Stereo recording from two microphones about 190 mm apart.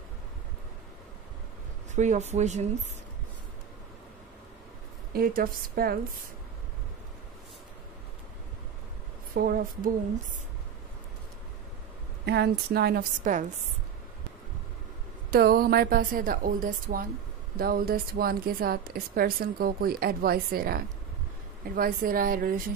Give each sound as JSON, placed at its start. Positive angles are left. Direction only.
{"t": 2.0, "sound": "speech", "side_deg": -40}
{"t": 5.1, "sound": "a woman's voice", "side_deg": -50}
{"t": 9.3, "sound": "a woman's voice", "side_deg": -50}
{"t": 12.3, "sound": "a woman's voice", "side_deg": -60}
{"t": 15.3, "sound": "a woman's voice", "side_deg": -50}